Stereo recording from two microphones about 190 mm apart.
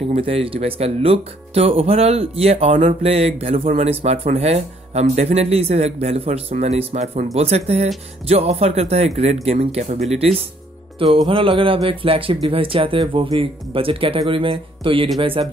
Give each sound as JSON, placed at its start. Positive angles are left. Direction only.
{"t": 0.1, "sound": "speech", "side_deg": -30}
{"t": 11.2, "sound": "speech", "side_deg": -25}